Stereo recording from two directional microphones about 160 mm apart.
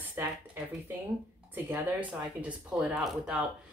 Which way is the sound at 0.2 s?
15° right (ahead or behind).